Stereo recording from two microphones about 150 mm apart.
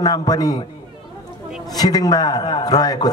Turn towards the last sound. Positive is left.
turn(degrees=25)  # may be behind; listen again after turning